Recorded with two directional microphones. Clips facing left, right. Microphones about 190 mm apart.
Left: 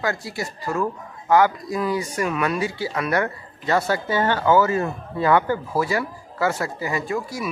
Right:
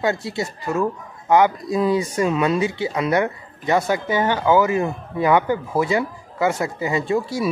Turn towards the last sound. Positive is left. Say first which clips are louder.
# right 5 dB
turn(degrees=-30)  # may be behind; listen again after turning